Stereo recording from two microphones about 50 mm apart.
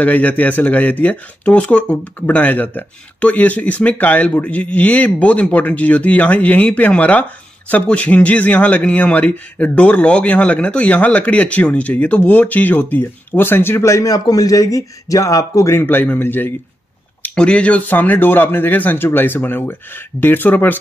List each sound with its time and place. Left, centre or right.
0.0 s speech: left
2.2 s a man's voice: left
15.2 s speech: left
15.8 s speech: left
17.4 s a man's voice: left
17.8 s speech: left